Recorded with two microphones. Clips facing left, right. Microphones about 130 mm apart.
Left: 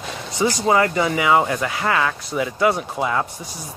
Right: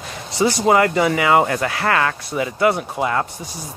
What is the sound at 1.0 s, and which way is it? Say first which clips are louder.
Speech: right 2 dB; 60° right (ahead or behind).